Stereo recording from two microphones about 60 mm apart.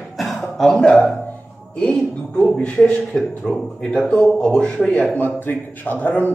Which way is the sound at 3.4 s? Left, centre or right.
Centre.